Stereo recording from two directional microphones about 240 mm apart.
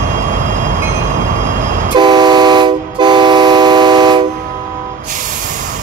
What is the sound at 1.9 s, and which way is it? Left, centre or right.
Vehicle, centre.